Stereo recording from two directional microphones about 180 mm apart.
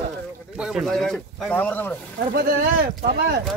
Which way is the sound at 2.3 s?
55° right (ahead or behind).